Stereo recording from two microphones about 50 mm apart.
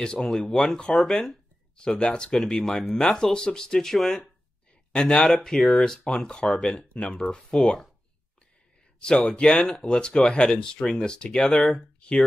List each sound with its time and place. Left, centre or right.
0.2 s speech: centre
9.0 s speech: centre